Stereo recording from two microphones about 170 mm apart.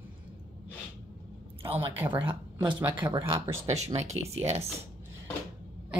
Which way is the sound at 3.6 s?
40° right (ahead or behind).